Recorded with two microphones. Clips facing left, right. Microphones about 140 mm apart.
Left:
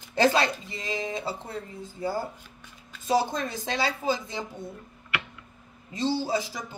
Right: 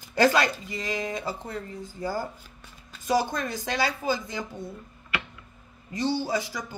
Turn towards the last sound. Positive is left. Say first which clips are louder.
# even
turn(degrees=25)  # may be behind; listen again after turning